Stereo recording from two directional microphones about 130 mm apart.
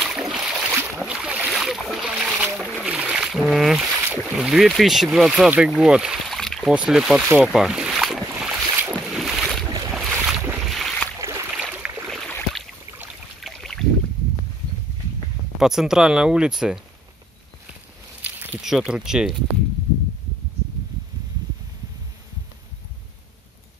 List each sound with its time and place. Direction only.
0.0 s boat: 5° right (ahead or behind)
4.0 s boat: 15° right (ahead or behind)
4.4 s speech: 5° right (ahead or behind)
7.4 s boat: 5° right (ahead or behind)
11.1 s boat: 20° right (ahead or behind)
11.5 s boat: 10° right (ahead or behind)
12.1 s a sound: centre (ahead or behind)
13.4 s boat: centre (ahead or behind)
15.6 s speech: 5° right (ahead or behind)
18.2 s a sound: 15° right (ahead or behind)
18.6 s speech: 5° right (ahead or behind)